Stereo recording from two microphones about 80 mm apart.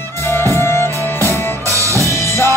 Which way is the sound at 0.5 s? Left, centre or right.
Left.